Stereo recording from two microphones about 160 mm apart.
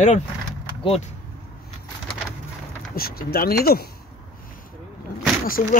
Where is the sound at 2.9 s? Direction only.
70° left (ahead or behind).